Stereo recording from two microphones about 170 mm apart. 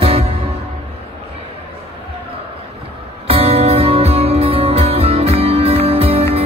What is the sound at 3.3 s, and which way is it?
Music, 35° right (ahead or behind).